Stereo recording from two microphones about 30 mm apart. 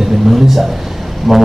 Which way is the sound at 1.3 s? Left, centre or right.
Centre.